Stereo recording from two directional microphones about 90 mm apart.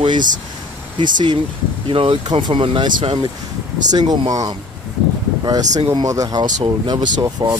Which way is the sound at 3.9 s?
50° right (ahead or behind).